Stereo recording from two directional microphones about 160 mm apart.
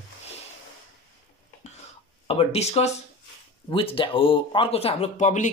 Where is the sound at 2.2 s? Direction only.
35° left (ahead or behind).